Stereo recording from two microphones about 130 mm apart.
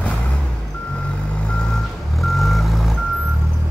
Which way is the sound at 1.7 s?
Centre (ahead or behind).